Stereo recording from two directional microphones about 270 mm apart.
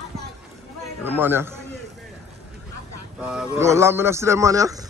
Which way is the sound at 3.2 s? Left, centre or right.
Centre.